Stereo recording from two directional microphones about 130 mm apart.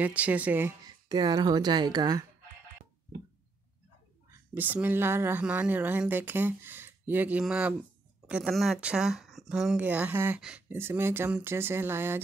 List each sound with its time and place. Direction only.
0.0 s speech: 10° right (ahead or behind)
0.8 s speech: 30° right (ahead or behind)
4.6 s speech: 15° right (ahead or behind)